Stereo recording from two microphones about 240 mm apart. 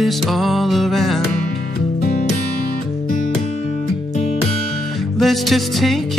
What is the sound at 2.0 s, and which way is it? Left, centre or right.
Music, left.